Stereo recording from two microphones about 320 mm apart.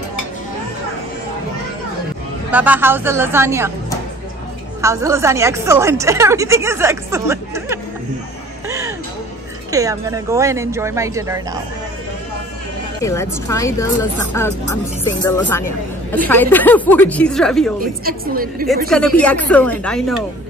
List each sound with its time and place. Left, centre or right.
2.5 s speech: centre
4.8 s speech: centre
8.6 s a sound: centre
9.7 s speech: centre
13.0 s a woman's voice: centre
18.0 s a woman's voice: right
18.9 s a woman's voice: centre